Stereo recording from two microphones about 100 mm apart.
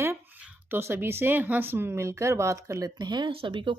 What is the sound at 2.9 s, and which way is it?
Speech, 45° right (ahead or behind).